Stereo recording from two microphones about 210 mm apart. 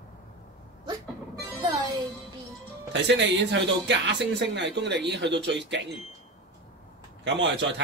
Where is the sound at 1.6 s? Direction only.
20° right (ahead or behind).